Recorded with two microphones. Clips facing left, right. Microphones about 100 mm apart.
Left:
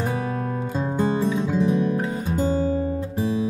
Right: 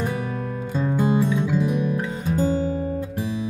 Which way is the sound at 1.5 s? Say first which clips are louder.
Left 2 dB; 25° left (ahead or behind).